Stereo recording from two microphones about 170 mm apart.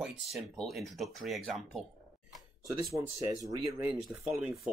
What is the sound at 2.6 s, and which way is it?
Speech, 20° right (ahead or behind).